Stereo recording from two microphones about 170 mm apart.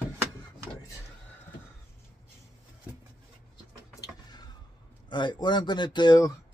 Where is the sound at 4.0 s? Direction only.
25° left (ahead or behind).